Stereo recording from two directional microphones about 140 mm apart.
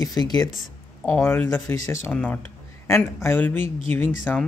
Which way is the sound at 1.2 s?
15° left (ahead or behind).